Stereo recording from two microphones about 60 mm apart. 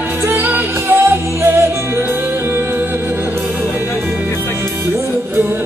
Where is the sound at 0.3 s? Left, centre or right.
Right.